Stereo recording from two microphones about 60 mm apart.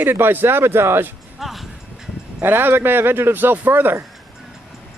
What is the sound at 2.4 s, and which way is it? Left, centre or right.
Speech, right.